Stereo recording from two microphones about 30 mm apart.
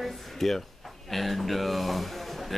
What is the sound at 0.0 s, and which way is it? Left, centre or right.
A woman's voice, centre.